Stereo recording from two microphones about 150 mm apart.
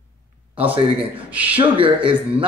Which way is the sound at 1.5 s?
35° right (ahead or behind).